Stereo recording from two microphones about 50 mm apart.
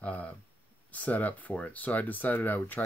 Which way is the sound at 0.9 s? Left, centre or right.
Left.